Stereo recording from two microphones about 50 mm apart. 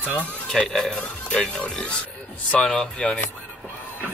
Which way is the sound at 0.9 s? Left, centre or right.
Left.